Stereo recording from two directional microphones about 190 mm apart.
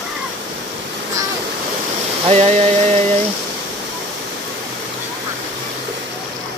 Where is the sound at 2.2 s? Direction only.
35° right (ahead or behind).